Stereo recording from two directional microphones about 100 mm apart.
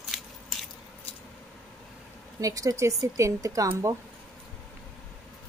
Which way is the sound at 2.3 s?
35° right (ahead or behind).